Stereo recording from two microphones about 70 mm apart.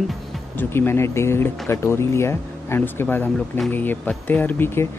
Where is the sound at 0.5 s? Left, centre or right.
Left.